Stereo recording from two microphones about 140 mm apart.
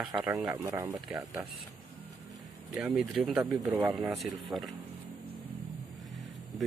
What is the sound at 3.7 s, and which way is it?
Speech, 15° right (ahead or behind).